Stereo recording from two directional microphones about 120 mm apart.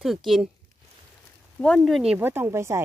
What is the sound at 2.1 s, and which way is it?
Speech, 15° right (ahead or behind).